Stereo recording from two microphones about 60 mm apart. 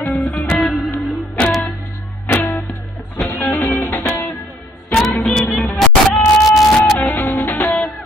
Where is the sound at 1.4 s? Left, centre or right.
Centre.